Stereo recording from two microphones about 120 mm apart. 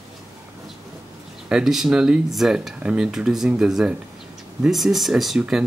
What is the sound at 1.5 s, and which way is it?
Speech, 5° right (ahead or behind).